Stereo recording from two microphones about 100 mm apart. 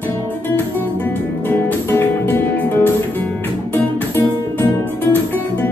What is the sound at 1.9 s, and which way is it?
Music, 25° left (ahead or behind).